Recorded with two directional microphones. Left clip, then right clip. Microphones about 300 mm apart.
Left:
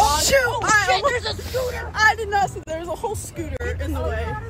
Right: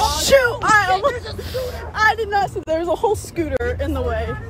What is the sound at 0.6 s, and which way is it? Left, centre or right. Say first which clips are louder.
Speech: right 3 dB; centre.